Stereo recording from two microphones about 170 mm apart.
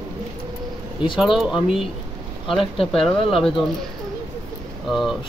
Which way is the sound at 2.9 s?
30° left (ahead or behind).